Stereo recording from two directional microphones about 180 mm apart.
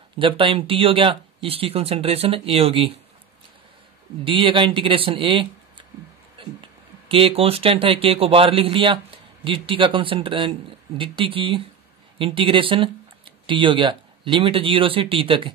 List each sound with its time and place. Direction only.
0.2 s speech: 30° right (ahead or behind)
4.2 s speech: 30° right (ahead or behind)
6.4 s a sound: 30° right (ahead or behind)
7.1 s speech: 30° right (ahead or behind)